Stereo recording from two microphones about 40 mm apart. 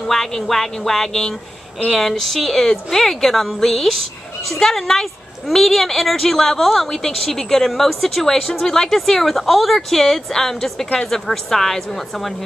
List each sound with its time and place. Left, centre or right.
0.0 s a woman's voice: centre